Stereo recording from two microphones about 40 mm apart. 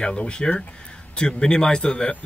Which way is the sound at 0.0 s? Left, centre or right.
Left.